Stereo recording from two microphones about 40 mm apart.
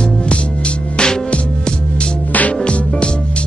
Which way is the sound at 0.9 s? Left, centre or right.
Left.